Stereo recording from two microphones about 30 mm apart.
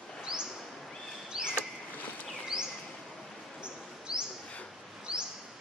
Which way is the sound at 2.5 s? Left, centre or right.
Right.